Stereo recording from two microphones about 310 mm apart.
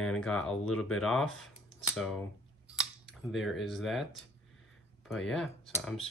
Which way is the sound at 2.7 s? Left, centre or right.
Centre.